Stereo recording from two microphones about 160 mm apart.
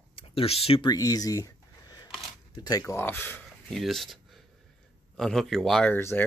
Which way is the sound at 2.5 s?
25° left (ahead or behind).